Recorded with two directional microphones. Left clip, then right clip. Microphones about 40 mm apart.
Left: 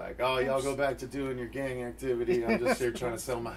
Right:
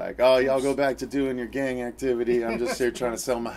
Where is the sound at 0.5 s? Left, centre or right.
Right.